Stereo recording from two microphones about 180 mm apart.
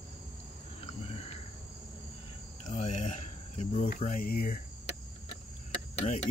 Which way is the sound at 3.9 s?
50° left (ahead or behind).